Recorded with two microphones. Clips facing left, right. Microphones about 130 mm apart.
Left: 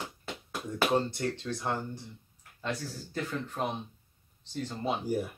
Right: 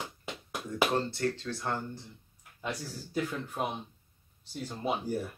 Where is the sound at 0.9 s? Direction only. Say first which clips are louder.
Left 1 dB; 15° left (ahead or behind).